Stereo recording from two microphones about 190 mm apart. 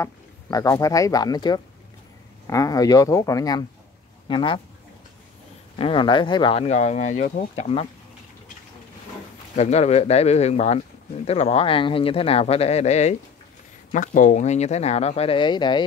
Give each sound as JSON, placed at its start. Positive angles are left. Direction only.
{"t": 0.0, "sound": "speech", "side_deg": 20}
{"t": 5.8, "sound": "speech", "side_deg": 25}
{"t": 9.6, "sound": "speech", "side_deg": 35}